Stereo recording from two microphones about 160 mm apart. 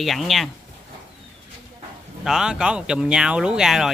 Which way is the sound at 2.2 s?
5° right (ahead or behind).